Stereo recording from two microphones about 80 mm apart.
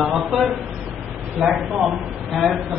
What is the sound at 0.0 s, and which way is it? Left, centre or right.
A man's voice, centre.